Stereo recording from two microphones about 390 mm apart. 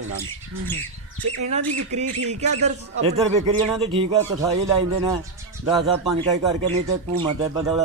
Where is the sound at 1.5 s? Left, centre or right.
Centre.